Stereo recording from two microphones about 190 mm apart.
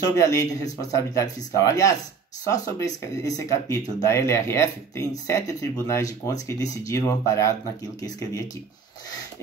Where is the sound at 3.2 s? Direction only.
20° left (ahead or behind).